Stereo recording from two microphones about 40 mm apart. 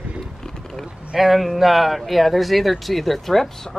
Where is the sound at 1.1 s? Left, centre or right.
Centre.